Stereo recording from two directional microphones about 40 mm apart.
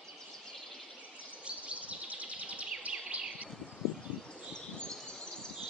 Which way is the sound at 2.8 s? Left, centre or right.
Right.